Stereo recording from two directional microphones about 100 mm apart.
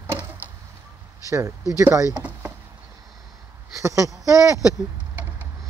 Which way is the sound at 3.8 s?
30° right (ahead or behind).